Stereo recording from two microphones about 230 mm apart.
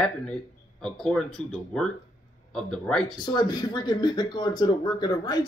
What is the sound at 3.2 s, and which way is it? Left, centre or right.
Speech, centre.